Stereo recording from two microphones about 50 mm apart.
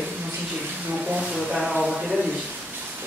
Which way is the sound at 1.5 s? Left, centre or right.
Centre.